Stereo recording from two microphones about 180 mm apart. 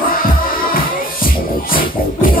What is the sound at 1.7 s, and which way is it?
Music, 50° left (ahead or behind).